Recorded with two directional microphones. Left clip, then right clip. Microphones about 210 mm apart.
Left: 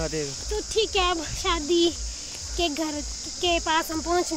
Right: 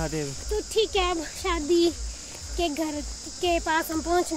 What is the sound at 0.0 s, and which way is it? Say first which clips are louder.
Speech: left 1 dB; 50° right (ahead or behind).